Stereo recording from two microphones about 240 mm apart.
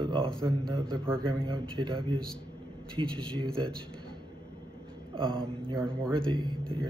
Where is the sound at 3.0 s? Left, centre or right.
Centre.